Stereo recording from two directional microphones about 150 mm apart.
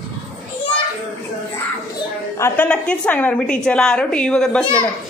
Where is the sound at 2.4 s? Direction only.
15° left (ahead or behind).